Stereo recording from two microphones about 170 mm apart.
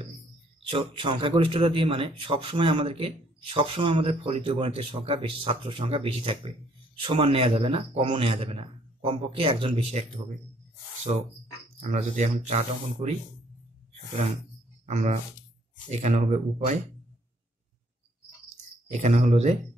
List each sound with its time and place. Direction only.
0.7 s a man's voice: 30° right (ahead or behind)
11.8 s speech: 45° right (ahead or behind)
14.1 s a man's voice: 45° right (ahead or behind)
18.9 s a man's voice: 40° right (ahead or behind)